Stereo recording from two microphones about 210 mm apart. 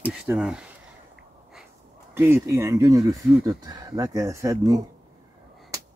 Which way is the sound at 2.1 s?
10° right (ahead or behind).